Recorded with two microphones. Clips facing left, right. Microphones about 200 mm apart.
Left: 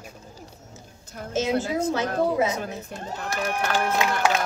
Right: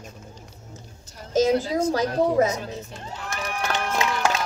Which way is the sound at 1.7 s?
40° right (ahead or behind).